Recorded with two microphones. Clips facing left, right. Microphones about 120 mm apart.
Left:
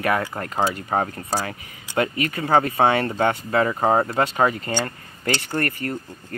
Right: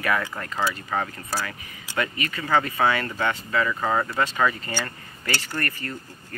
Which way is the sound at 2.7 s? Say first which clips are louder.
Left 4 dB; 30° left (ahead or behind).